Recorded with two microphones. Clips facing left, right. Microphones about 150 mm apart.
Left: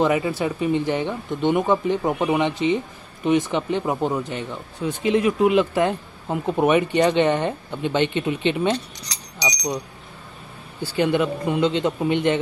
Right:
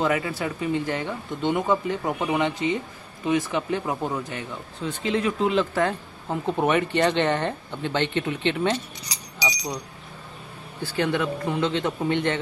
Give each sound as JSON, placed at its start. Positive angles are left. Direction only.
{"t": 0.0, "sound": "speech", "side_deg": 20}
{"t": 11.0, "sound": "speech", "side_deg": 15}